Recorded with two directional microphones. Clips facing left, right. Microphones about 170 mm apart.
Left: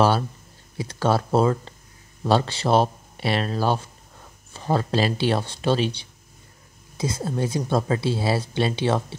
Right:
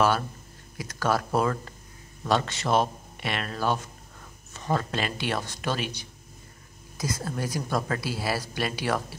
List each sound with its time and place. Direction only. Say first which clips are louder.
0.7 s a woman's voice: left 4 dB; 30° left (ahead or behind)